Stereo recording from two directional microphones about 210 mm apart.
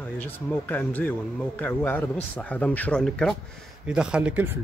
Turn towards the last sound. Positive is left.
turn(degrees=-10)  # may be behind; listen again after turning